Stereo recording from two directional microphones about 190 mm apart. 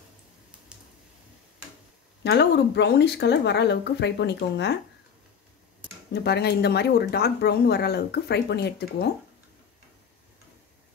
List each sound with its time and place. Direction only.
0.7 s a sound: 5° right (ahead or behind)
2.2 s speech: 65° left (ahead or behind)
6.1 s speech: 60° left (ahead or behind)